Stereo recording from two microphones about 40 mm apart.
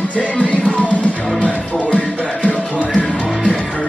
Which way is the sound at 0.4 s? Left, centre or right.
Left.